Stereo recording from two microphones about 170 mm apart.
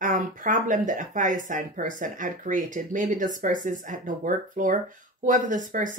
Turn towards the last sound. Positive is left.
turn(degrees=-50)  # may be behind; listen again after turning